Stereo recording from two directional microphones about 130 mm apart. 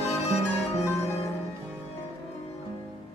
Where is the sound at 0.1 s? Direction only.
55° left (ahead or behind).